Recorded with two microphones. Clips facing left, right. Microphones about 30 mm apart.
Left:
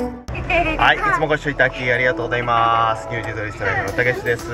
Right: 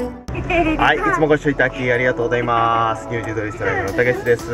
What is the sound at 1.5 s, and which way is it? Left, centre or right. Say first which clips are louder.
Speech: right 4 dB; centre.